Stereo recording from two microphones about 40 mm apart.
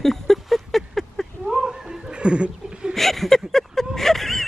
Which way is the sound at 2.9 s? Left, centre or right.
Centre.